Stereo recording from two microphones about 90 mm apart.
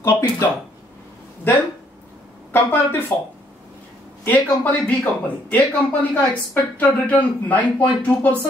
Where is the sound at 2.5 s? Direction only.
25° left (ahead or behind).